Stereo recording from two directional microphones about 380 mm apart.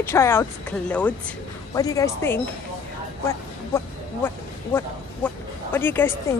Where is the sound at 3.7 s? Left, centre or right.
Centre.